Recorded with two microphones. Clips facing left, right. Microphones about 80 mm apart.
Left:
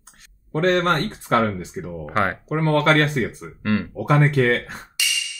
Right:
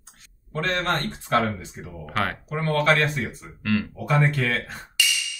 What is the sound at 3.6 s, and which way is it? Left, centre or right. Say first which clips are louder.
Speech: left 2 dB; left.